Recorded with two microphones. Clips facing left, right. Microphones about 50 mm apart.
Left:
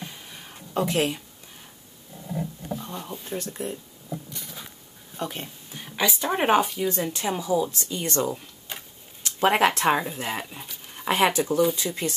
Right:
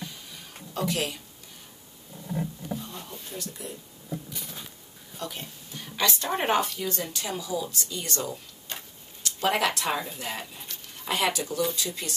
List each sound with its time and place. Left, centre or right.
0.1 s a sound: left
2.9 s speech: left
5.1 s a sound: left
5.9 s speech: centre
6.9 s speech: left
8.7 s tick-tock: centre
9.2 s speech: left